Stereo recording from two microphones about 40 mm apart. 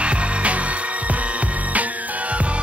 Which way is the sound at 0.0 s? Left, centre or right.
Right.